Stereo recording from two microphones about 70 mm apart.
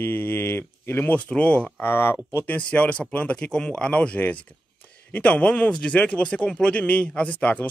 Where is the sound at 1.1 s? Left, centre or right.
Centre.